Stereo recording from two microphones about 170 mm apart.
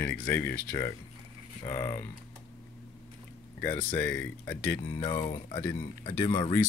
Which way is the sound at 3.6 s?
10° left (ahead or behind).